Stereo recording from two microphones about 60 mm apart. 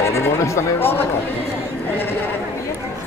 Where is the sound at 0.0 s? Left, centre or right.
Left.